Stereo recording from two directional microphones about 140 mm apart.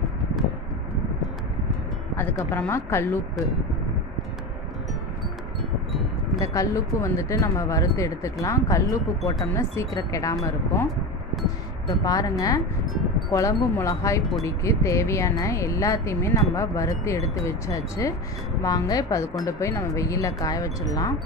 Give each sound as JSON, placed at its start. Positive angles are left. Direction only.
{"t": 2.1, "sound": "a woman's voice", "side_deg": 15}
{"t": 5.6, "sound": "a sound", "side_deg": 0}
{"t": 6.4, "sound": "speech", "side_deg": 25}
{"t": 11.9, "sound": "speech", "side_deg": 25}